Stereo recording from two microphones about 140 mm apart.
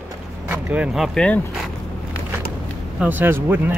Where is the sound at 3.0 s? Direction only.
15° right (ahead or behind).